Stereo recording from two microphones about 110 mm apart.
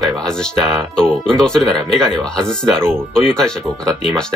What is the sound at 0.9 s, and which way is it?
Speech, 5° left (ahead or behind).